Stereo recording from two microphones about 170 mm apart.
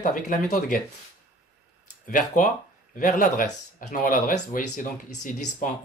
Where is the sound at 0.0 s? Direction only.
50° left (ahead or behind).